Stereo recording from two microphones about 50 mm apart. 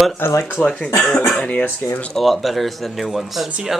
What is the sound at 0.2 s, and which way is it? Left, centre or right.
Speech, left.